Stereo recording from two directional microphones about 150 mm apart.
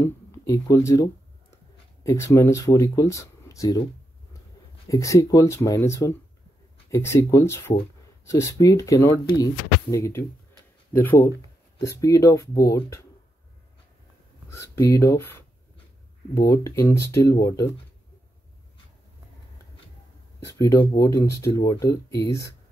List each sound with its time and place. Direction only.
0.0 s a sound: 20° left (ahead or behind)
2.0 s speech: 20° left (ahead or behind)
4.8 s speech: 20° left (ahead or behind)
14.5 s speech: 20° left (ahead or behind)
20.5 s speech: 20° left (ahead or behind)